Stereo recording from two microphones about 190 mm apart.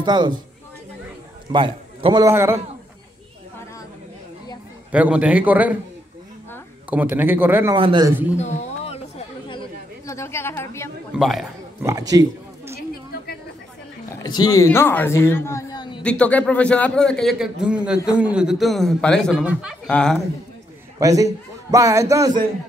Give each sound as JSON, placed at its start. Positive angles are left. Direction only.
{"t": 0.0, "sound": "a woman's voice", "side_deg": -25}
{"t": 1.5, "sound": "a man's voice", "side_deg": -25}
{"t": 2.2, "sound": "a man's voice", "side_deg": -15}
{"t": 4.9, "sound": "a man's voice", "side_deg": -5}
{"t": 6.9, "sound": "a man's voice", "side_deg": -10}
{"t": 7.7, "sound": "a man's voice", "side_deg": -25}
{"t": 8.4, "sound": "chatter", "side_deg": 35}
{"t": 10.1, "sound": "a woman's voice", "side_deg": 15}
{"t": 11.1, "sound": "a man's voice", "side_deg": 0}
{"t": 12.1, "sound": "a sound", "side_deg": -20}
{"t": 14.1, "sound": "a man's voice", "side_deg": 20}
{"t": 16.0, "sound": "a man's voice", "side_deg": 5}
{"t": 21.0, "sound": "a man's voice", "side_deg": -15}